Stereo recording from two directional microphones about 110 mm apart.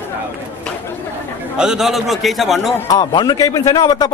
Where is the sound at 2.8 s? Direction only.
40° left (ahead or behind).